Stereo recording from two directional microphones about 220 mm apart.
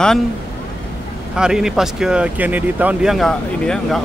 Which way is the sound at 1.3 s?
5° right (ahead or behind).